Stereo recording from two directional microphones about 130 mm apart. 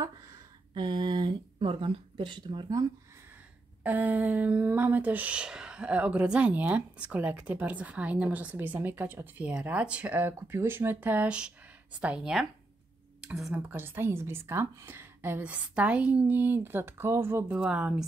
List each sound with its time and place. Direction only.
0.0 s speech: 30° right (ahead or behind)
3.8 s speech: 15° right (ahead or behind)